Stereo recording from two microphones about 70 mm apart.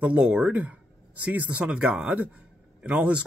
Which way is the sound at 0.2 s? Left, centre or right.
Centre.